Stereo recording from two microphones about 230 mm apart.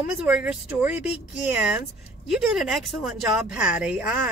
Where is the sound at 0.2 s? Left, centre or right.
Centre.